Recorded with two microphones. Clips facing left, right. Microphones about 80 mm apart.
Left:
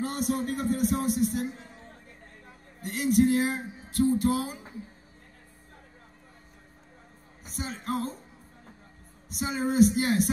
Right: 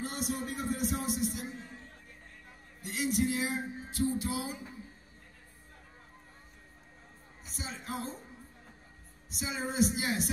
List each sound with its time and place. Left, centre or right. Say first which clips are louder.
0.0 s speech: left 7 dB; left
2.8 s a sound: left 8 dB; left
7.4 s speech: left 7 dB; left
9.3 s speech: left 8 dB; left